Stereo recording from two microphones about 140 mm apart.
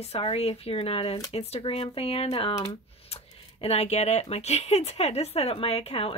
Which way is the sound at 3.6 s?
45° left (ahead or behind).